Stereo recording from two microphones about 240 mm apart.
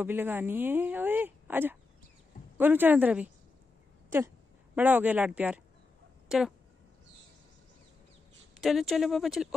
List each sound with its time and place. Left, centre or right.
0.0 s speech: centre
4.7 s speech: centre
8.5 s speech: centre